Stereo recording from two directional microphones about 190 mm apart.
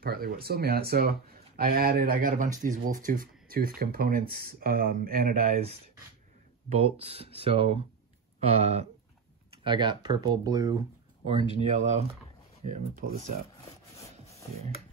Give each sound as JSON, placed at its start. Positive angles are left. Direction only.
{"t": 0.0, "sound": "speech", "side_deg": -55}
{"t": 6.7, "sound": "speech", "side_deg": -30}
{"t": 11.2, "sound": "speech", "side_deg": -35}